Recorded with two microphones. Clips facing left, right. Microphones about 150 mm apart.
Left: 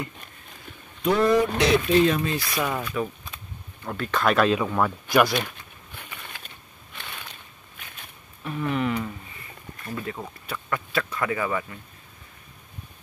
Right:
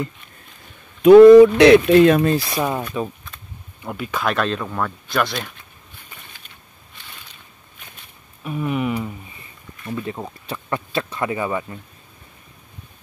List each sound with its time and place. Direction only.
1.0 s speech: 90° right
1.6 s speech: 70° right (ahead or behind)
2.3 s speech: 30° right (ahead or behind)
3.3 s camera: 10° left (ahead or behind)
3.8 s speech: 10° right (ahead or behind); by 5.5 s 5° left (ahead or behind)
5.9 s a sound: 70° left (ahead or behind)
8.5 s a sound: 15° right (ahead or behind)
9.8 s speech: 25° right (ahead or behind)